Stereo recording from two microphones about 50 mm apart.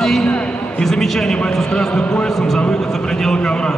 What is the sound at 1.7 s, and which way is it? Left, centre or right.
Speech, centre.